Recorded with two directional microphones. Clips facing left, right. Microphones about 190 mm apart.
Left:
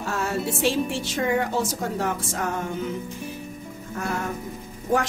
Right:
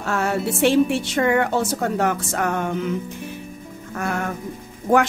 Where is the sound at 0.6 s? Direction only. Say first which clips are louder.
Right 9 dB; 65° right (ahead or behind).